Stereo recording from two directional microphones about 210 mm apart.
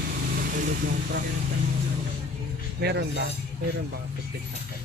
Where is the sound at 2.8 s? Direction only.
50° right (ahead or behind).